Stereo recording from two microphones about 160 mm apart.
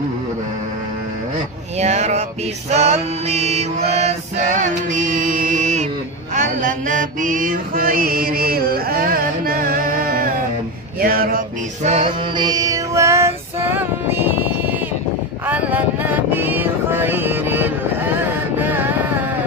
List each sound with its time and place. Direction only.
1.8 s speech: 45° right (ahead or behind)
2.7 s mantra: 45° right (ahead or behind); by 10.3 s 65° right (ahead or behind)
11.0 s a sound: 65° right (ahead or behind)
11.8 s music: 40° right (ahead or behind)
12.4 s music: 25° right (ahead or behind)
15.4 s a sound: 10° right (ahead or behind)